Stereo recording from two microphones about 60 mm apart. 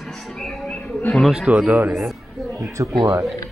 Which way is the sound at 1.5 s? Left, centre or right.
Right.